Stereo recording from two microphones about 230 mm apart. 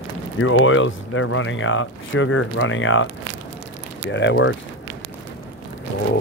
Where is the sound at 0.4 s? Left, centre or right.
Left.